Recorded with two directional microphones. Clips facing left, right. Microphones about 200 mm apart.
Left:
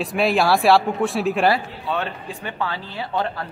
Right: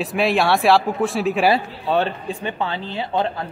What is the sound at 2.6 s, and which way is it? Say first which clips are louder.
Speech: right 2 dB; 20° right (ahead or behind).